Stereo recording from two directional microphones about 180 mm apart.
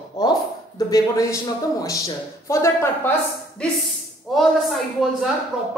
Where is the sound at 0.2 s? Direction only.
20° left (ahead or behind).